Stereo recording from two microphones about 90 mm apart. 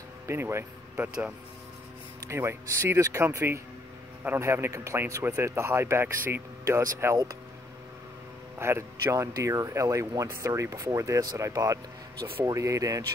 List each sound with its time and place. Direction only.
0.3 s speech: 30° right (ahead or behind)
8.5 s speech: 30° right (ahead or behind)